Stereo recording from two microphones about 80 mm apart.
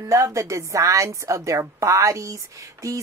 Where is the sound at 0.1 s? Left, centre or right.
Right.